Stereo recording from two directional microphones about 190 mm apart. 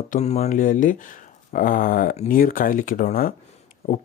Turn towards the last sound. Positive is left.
turn(degrees=35)  # may be behind; listen again after turning